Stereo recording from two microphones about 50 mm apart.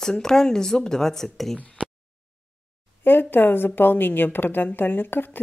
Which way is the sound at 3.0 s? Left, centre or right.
Left.